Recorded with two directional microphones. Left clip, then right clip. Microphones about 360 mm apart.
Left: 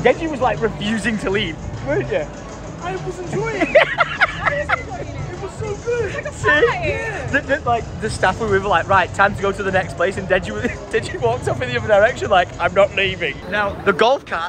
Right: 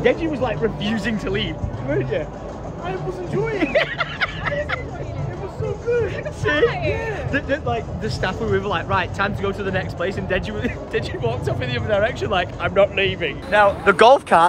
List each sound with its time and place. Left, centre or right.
0.0 s speech: centre
3.4 s speech: centre
5.9 s speech: centre
7.4 s speech: centre